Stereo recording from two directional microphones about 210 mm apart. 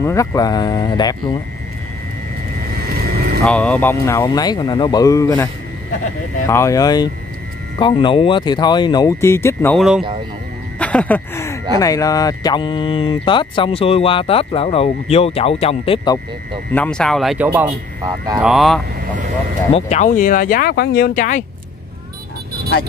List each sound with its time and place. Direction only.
0.0 s speech: 15° left (ahead or behind)
3.4 s speech: 5° left (ahead or behind)
9.8 s speech: centre (ahead or behind); by 16.2 s 25° left (ahead or behind)
16.7 s speech: 5° left (ahead or behind); by 18.4 s 15° right (ahead or behind)
18.4 s speech: centre (ahead or behind)
19.7 s speech: 35° left (ahead or behind)